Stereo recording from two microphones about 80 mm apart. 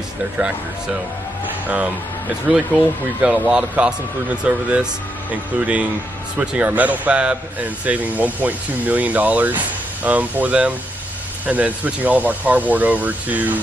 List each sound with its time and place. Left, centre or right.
2.5 s speech: centre